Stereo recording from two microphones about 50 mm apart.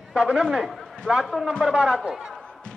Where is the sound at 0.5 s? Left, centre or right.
Centre.